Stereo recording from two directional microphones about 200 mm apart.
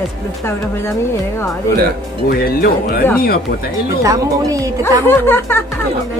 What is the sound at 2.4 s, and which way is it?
Speech, 45° left (ahead or behind).